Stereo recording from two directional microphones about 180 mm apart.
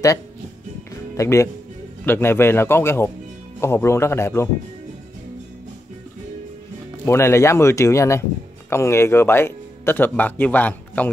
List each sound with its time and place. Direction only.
1.1 s speech: 15° left (ahead or behind)
7.1 s speech: 15° left (ahead or behind)